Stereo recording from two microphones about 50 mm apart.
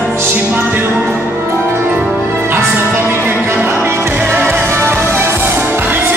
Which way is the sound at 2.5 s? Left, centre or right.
Right.